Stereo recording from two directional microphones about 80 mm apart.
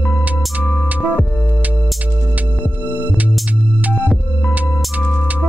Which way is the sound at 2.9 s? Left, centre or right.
Right.